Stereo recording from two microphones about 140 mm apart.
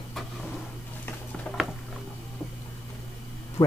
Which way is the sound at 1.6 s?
5° right (ahead or behind).